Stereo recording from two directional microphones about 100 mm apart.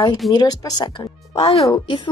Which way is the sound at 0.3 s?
40° left (ahead or behind).